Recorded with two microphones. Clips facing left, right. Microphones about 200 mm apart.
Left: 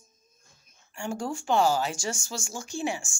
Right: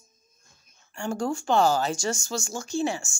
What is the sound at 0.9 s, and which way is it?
Speech, 10° left (ahead or behind).